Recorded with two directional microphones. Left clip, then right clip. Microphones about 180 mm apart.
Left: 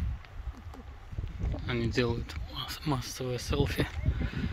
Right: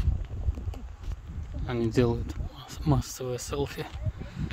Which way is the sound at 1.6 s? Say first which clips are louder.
Right 4 dB; 35° right (ahead or behind).